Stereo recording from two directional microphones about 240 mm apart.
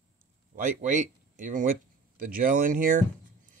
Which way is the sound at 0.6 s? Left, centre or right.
Right.